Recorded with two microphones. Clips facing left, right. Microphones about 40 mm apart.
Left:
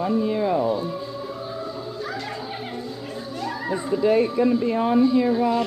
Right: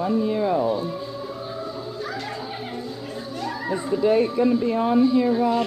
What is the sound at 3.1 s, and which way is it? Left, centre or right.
Children playing, centre.